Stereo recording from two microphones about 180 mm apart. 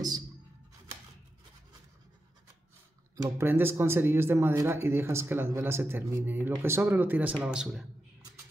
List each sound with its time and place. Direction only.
3.2 s speech: 15° right (ahead or behind)